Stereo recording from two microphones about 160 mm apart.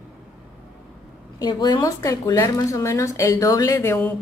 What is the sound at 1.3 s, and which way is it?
A woman's voice, 25° left (ahead or behind).